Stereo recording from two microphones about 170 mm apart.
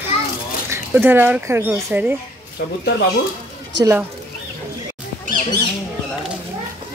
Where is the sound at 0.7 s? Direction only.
10° right (ahead or behind).